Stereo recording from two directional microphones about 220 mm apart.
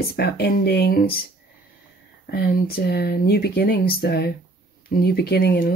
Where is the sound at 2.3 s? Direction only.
45° left (ahead or behind).